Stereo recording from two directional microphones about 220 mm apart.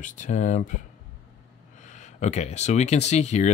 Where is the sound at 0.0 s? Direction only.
35° left (ahead or behind).